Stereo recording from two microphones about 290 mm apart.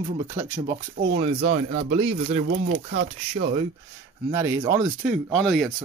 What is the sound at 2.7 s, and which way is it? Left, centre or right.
Speech, right.